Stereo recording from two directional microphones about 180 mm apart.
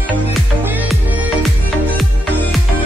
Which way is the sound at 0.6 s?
10° right (ahead or behind).